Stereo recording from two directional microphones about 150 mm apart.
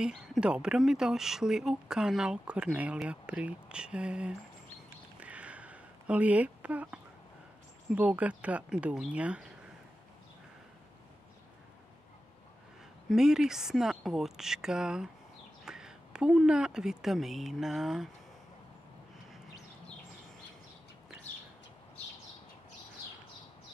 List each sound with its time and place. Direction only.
0.0 s speech: 5° right (ahead or behind)
5.2 s a sound: 10° right (ahead or behind)
7.9 s speech: 10° right (ahead or behind)
13.1 s speech: 5° right (ahead or behind)